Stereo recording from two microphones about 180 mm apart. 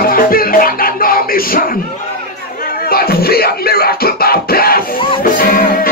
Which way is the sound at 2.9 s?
55° left (ahead or behind).